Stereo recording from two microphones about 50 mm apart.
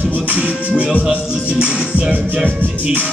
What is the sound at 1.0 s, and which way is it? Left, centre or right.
Music, centre.